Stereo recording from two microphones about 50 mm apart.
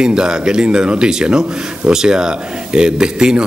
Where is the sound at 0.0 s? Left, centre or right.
Centre.